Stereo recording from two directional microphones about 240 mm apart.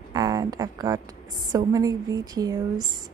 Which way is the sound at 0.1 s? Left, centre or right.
Centre.